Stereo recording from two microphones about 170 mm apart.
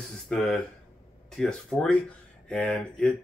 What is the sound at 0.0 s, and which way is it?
Speech, centre (ahead or behind).